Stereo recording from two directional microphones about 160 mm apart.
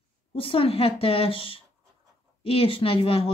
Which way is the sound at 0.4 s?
35° left (ahead or behind).